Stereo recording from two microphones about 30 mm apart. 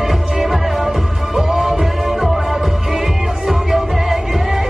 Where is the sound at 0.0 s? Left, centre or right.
Centre.